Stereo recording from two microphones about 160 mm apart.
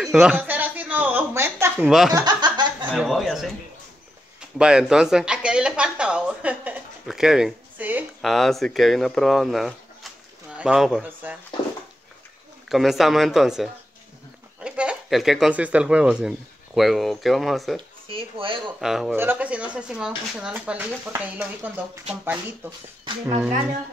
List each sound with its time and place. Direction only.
0.0 s a sound: 5° right (ahead or behind)
1.9 s speech: 5° right (ahead or behind)
2.1 s laughter: 25° right (ahead or behind)
3.0 s speech: centre (ahead or behind)
4.6 s speech: 5° right (ahead or behind)
12.6 s speech: centre (ahead or behind)
18.0 s speech: 35° right (ahead or behind)
18.8 s speech: 5° right (ahead or behind)